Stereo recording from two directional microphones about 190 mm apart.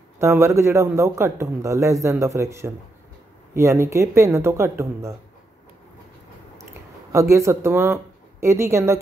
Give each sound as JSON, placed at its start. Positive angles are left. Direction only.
{"t": 0.2, "sound": "a man's voice", "side_deg": -15}
{"t": 7.1, "sound": "speech", "side_deg": -15}